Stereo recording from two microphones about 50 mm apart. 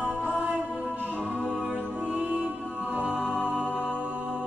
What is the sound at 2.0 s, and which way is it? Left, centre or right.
Music, right.